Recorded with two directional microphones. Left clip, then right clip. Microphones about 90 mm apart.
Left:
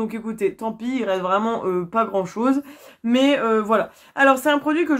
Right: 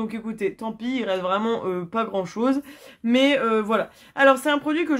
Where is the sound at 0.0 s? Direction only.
5° right (ahead or behind).